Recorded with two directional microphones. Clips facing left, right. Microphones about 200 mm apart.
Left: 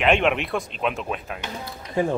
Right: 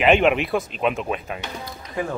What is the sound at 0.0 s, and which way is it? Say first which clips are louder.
Speech: right 3 dB; centre (ahead or behind).